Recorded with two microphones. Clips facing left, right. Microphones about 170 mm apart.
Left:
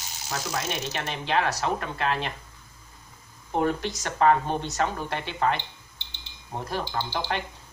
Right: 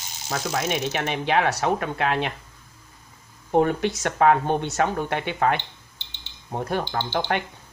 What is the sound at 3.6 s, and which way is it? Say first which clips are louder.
Speech: right 4 dB; 60° right (ahead or behind).